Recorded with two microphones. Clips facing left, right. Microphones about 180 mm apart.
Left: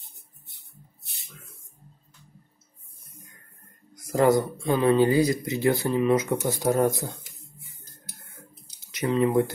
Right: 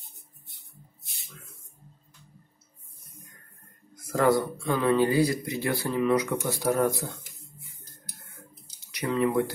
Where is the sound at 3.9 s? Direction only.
20° left (ahead or behind).